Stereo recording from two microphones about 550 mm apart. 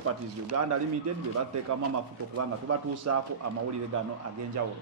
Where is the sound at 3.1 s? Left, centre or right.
Right.